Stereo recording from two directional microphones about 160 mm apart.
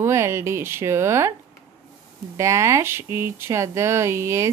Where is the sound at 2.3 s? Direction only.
20° right (ahead or behind).